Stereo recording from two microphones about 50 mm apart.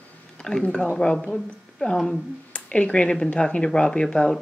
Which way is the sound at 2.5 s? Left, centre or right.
Left.